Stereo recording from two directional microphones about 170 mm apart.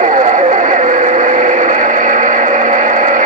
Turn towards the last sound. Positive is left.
turn(degrees=-50)  # may be behind; listen again after turning